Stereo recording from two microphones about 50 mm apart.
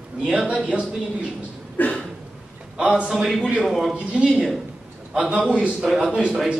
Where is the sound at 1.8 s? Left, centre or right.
Left.